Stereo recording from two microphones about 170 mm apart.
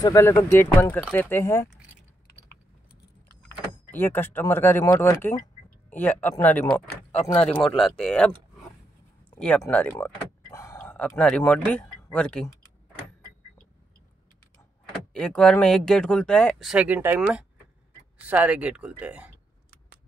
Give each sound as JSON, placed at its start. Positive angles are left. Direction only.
{"t": 0.0, "sound": "speech", "side_deg": 15}
{"t": 3.9, "sound": "speech", "side_deg": 10}
{"t": 9.3, "sound": "a sound", "side_deg": 5}
{"t": 9.6, "sound": "speech", "side_deg": 10}
{"t": 10.8, "sound": "speech", "side_deg": 5}
{"t": 15.1, "sound": "speech", "side_deg": 5}